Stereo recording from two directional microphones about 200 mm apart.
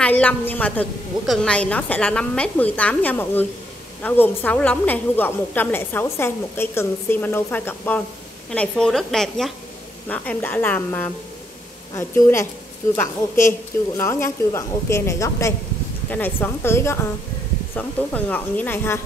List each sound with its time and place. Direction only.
0.0 s a woman's voice: 5° left (ahead or behind)